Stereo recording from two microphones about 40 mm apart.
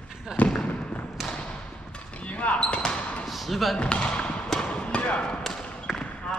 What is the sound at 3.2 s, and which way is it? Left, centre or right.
Basketball bounce, centre.